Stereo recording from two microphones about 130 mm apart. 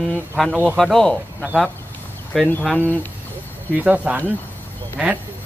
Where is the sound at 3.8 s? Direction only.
10° right (ahead or behind).